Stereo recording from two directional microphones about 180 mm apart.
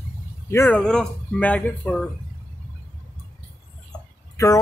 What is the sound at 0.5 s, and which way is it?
Speech, 10° left (ahead or behind).